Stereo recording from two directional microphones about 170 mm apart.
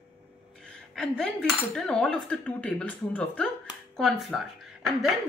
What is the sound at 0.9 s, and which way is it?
A woman's voice, 5° left (ahead or behind).